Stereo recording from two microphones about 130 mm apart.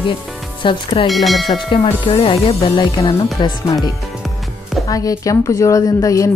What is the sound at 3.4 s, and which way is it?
Speech, 40° left (ahead or behind).